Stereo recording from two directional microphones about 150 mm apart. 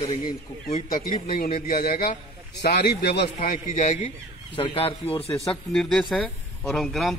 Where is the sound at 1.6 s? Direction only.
90° left; by 4.1 s 50° left (ahead or behind).